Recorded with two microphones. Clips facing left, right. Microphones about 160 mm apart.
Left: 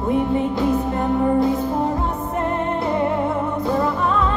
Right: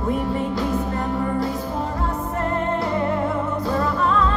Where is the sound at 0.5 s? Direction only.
20° left (ahead or behind).